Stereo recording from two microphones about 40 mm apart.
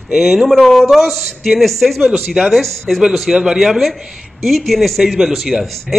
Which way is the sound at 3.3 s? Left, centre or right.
Centre.